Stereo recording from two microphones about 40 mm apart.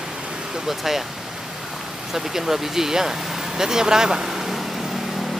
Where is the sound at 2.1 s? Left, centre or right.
Centre.